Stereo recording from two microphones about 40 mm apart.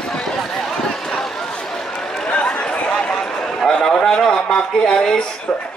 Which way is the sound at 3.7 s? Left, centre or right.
Centre.